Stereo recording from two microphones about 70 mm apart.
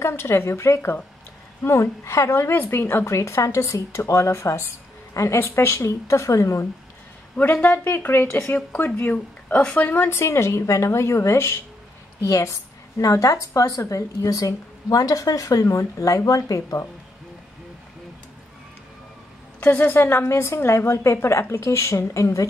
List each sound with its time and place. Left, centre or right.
0.0 s a woman's voice: left
7.6 s a woman's voice: left
9.1 s speech: centre
10.1 s a woman's voice: left
19.6 s a woman's voice: left